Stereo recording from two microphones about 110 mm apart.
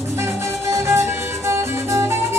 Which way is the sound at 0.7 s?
25° right (ahead or behind).